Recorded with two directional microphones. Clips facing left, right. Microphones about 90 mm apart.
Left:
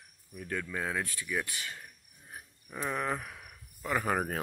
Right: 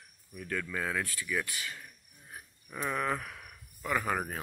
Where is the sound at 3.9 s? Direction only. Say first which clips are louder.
Left 1 dB; 30° left (ahead or behind).